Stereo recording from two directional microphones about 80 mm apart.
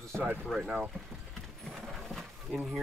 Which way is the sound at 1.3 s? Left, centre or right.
Centre.